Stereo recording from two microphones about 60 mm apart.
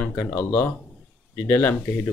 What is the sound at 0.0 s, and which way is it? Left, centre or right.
Speech, left.